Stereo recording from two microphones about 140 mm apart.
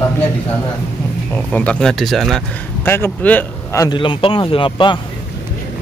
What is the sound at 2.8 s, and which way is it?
Speech, 15° left (ahead or behind).